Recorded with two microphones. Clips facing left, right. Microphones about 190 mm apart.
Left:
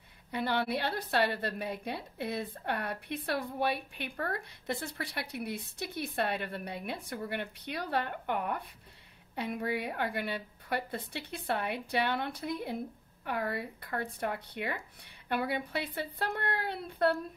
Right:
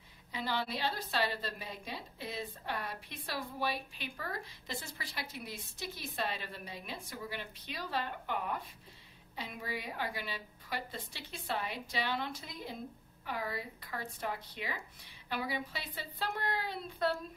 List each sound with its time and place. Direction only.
0.3 s a woman's voice: 60° left (ahead or behind)